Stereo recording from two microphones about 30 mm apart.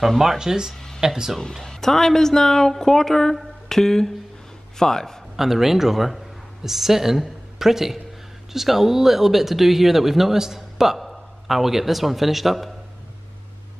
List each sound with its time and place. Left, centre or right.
0.4 s speech: centre
0.7 s a sound: centre
1.0 s speech: centre
1.6 s speech: centre
5.3 s speech: centre
11.0 s a man's voice: centre